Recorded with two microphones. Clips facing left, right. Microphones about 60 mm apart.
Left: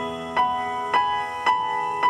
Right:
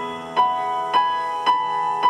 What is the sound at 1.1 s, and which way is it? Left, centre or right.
Music, left.